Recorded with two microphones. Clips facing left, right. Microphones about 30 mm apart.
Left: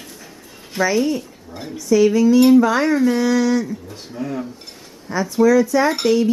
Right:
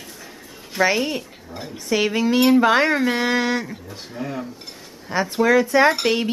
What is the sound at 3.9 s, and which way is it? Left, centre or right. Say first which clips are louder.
Speech: left 3 dB; centre.